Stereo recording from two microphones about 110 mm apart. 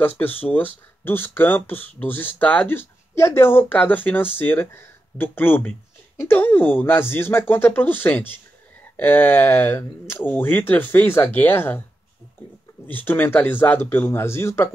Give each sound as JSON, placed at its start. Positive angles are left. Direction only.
{"t": 0.4, "sound": "speech", "side_deg": 15}
{"t": 12.8, "sound": "speech", "side_deg": 20}